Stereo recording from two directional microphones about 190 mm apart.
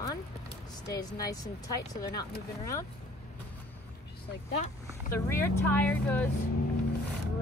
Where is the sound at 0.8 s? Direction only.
55° left (ahead or behind).